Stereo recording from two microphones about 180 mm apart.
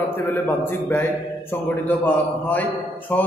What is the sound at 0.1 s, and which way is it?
A man's voice, 10° left (ahead or behind).